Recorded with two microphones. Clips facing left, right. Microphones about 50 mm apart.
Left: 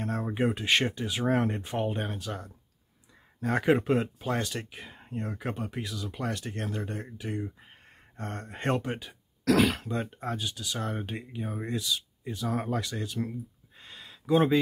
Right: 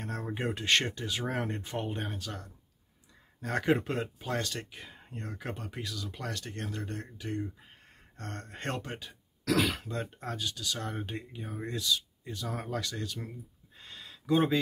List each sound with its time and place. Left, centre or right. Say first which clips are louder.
0.0 s speech: left 6 dB; centre
3.3 s speech: left 4 dB; centre
13.7 s a sound: left 1 dB; centre